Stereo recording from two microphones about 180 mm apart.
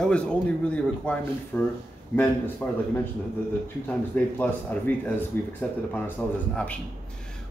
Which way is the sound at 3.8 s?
10° left (ahead or behind).